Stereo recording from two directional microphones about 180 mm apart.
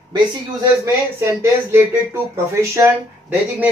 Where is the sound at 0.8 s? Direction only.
15° right (ahead or behind).